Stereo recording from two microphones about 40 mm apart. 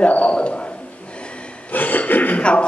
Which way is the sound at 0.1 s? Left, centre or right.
Left.